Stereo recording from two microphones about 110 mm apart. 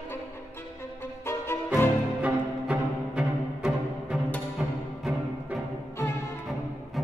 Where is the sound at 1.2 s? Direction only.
20° left (ahead or behind).